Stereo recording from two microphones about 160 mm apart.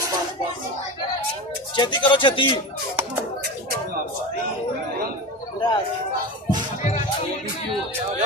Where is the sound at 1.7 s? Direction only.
30° left (ahead or behind).